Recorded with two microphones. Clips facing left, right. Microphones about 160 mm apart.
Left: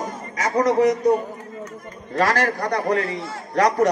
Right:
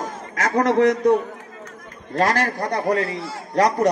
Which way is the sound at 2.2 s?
30° right (ahead or behind).